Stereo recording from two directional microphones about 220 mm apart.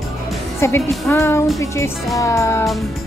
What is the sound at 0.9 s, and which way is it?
Speech, 10° left (ahead or behind).